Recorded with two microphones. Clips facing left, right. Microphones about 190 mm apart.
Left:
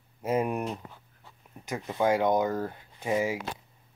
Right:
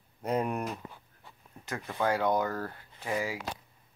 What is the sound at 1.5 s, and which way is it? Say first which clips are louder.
Speech: left 4 dB; 15° left (ahead or behind).